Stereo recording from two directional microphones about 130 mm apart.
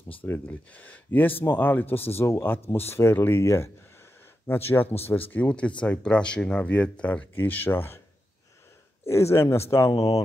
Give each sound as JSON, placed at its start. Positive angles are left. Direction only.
{"t": 0.2, "sound": "speech", "side_deg": 15}
{"t": 9.0, "sound": "speech", "side_deg": 20}